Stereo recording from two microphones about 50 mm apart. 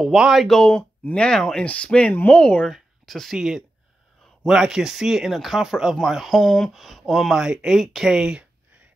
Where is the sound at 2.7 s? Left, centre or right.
Centre.